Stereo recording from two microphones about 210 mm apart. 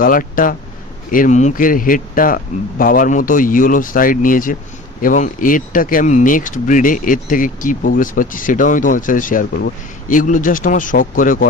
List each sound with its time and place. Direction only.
0.0 s speech: 40° left (ahead or behind)